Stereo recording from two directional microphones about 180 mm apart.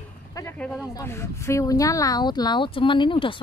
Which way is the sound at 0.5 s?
5° left (ahead or behind).